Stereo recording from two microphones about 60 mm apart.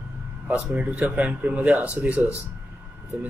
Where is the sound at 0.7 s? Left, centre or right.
Right.